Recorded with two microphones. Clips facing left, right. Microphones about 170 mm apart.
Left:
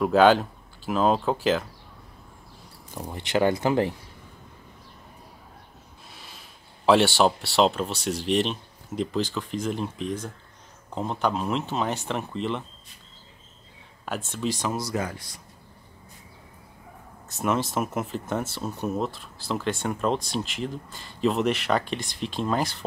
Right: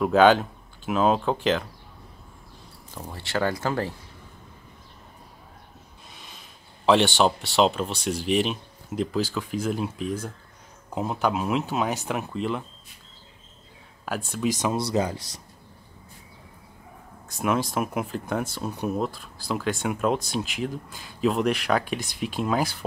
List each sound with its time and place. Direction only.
0.0 s speech: centre (ahead or behind)
2.9 s speech: 15° left (ahead or behind)
6.1 s a sound: 5° left (ahead or behind)
6.9 s speech: 5° left (ahead or behind)
14.0 s speech: 5° right (ahead or behind)
14.9 s speech: 20° right (ahead or behind)
17.3 s speech: 5° left (ahead or behind)